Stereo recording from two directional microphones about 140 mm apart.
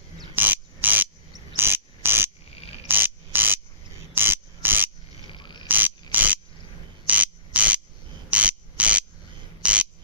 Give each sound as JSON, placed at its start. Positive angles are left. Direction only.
{"t": 0.4, "sound": "a sound", "side_deg": -15}
{"t": 4.1, "sound": "frog", "side_deg": -15}
{"t": 5.3, "sound": "frog", "side_deg": 35}
{"t": 5.7, "sound": "mechanisms", "side_deg": -15}
{"t": 6.1, "sound": "cricket", "side_deg": -10}
{"t": 7.1, "sound": "ratchet", "side_deg": -10}
{"t": 9.6, "sound": "frog", "side_deg": -10}